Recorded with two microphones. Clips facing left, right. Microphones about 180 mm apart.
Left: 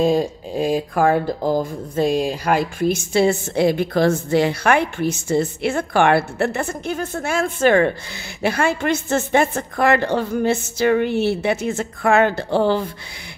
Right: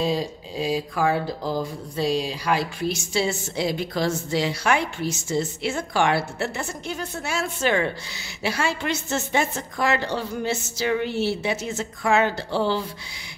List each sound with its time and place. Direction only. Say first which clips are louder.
0.0 s a woman's voice: left 7 dB; 50° left (ahead or behind)